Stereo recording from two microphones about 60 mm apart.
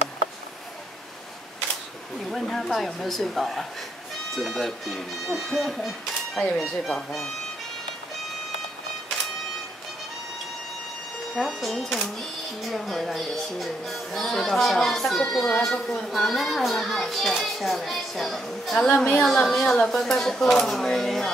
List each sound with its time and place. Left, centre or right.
2.2 s speech: centre
11.3 s a woman's voice: centre
16.1 s speech: centre
18.8 s a woman's voice: centre